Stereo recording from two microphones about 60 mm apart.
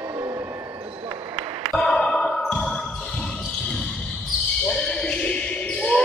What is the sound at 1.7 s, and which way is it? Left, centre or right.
Basketball bounce, centre.